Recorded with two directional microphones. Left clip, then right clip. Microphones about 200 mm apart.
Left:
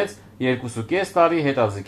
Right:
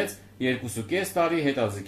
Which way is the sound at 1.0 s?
45° left (ahead or behind).